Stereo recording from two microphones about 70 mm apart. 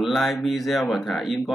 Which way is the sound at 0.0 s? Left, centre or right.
Centre.